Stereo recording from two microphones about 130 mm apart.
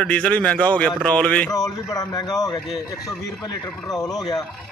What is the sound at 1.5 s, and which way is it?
A man's voice, 25° left (ahead or behind).